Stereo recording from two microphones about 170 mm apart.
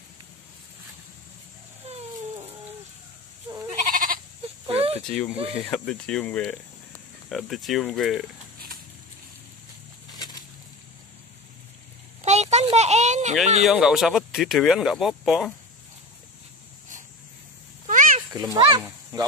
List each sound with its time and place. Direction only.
3.4 s goat: 15° right (ahead or behind)
3.7 s goat: 55° right (ahead or behind)
4.6 s a sound: 35° right (ahead or behind)
5.0 s speech: 5° left (ahead or behind)
12.2 s a sound: 40° right (ahead or behind)
13.7 s speech: centre (ahead or behind)
17.8 s cat: 50° right (ahead or behind)
18.3 s a child's voice: 20° right (ahead or behind)
18.8 s speech: 10° right (ahead or behind)